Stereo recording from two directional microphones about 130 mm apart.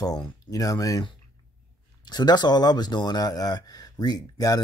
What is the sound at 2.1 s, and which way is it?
Speech, 35° left (ahead or behind).